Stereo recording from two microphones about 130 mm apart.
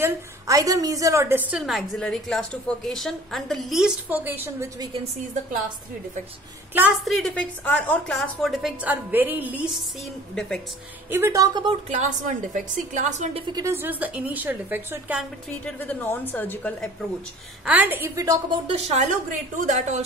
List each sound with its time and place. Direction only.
0.0 s a woman's voice: 25° right (ahead or behind)
1.5 s a woman's voice: centre (ahead or behind)
5.0 s a woman's voice: 70° right (ahead or behind)
7.1 s a woman's voice: 5° left (ahead or behind)
8.2 s a woman's voice: centre (ahead or behind)
11.1 s a woman's voice: 20° right (ahead or behind)
11.9 s a woman's voice: 70° right (ahead or behind)
13.5 s a woman's voice: 30° right (ahead or behind)
13.7 s a woman's voice: 15° right (ahead or behind)
15.6 s a woman's voice: 10° left (ahead or behind)
17.6 s a woman's voice: 15° right (ahead or behind)
18.1 s a woman's voice: 25° right (ahead or behind)
18.7 s a woman's voice: 55° right (ahead or behind); by 20.0 s 70° right (ahead or behind)